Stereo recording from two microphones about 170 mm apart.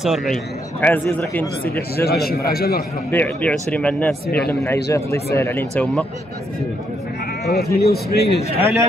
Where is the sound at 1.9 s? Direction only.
65° left (ahead or behind).